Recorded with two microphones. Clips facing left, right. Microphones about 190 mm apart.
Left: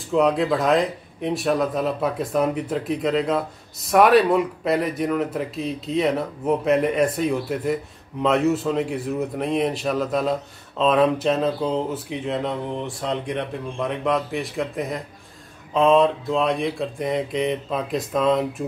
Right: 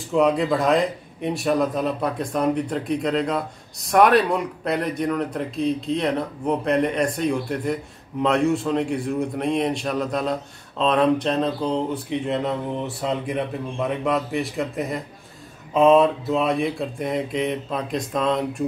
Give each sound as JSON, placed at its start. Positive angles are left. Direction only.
{"t": 0.1, "sound": "speech", "side_deg": 0}